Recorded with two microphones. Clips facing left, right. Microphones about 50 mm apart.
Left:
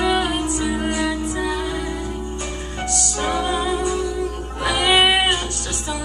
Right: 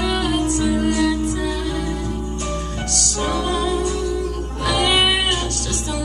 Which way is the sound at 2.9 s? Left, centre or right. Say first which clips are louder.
Left 1 dB; centre.